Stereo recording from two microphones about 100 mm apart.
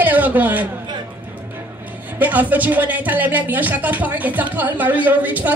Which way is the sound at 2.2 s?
15° right (ahead or behind).